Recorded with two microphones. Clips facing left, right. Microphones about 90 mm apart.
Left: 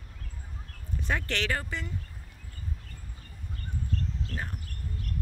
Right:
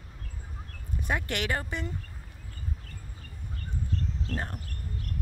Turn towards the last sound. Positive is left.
turn(degrees=-40)  # may be behind; listen again after turning